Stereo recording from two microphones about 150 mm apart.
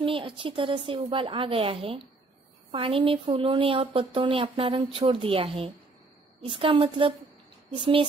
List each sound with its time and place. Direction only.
0.0 s speech: 35° right (ahead or behind)